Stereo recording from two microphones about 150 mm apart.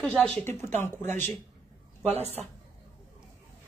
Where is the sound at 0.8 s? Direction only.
15° left (ahead or behind).